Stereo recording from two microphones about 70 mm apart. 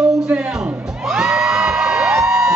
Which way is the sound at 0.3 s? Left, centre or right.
Centre.